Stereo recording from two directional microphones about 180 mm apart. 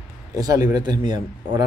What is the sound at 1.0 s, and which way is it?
Speech, 25° right (ahead or behind).